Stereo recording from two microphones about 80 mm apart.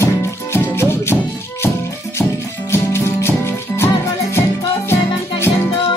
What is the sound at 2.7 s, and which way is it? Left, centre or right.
Music, left.